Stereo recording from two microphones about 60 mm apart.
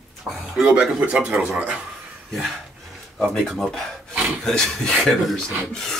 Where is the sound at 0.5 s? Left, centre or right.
Centre.